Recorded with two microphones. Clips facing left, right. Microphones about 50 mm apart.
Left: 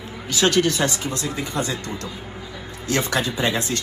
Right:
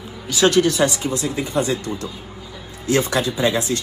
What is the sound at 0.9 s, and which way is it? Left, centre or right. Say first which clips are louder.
A man's voice: right 3 dB; left.